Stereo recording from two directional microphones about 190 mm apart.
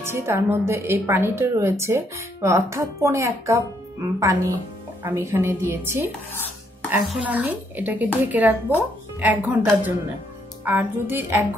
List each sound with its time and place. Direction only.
0.0 s a woman's voice: 15° right (ahead or behind)